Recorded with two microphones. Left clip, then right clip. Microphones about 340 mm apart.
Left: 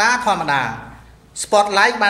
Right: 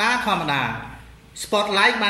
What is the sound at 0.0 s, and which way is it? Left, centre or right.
Speech, left.